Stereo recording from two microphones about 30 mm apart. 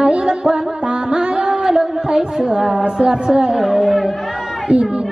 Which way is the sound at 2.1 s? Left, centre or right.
Right.